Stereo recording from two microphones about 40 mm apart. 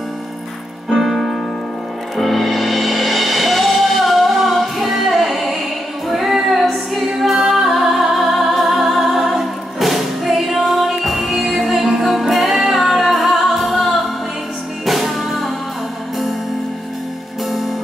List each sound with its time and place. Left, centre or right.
1.1 s music: centre